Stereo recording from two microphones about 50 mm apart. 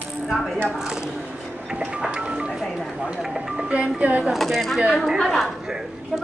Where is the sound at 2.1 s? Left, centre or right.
Right.